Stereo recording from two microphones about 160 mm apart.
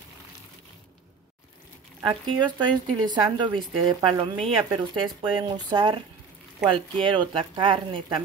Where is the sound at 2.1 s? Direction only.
30° right (ahead or behind).